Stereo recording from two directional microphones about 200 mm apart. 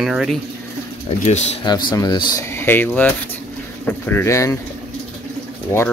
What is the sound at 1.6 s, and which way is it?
Speech, 20° left (ahead or behind).